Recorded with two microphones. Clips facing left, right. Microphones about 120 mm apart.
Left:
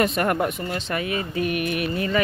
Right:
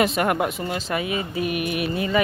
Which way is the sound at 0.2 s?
15° right (ahead or behind).